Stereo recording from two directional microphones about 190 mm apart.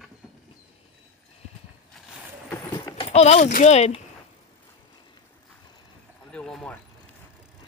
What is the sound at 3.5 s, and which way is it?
Speech, 40° left (ahead or behind).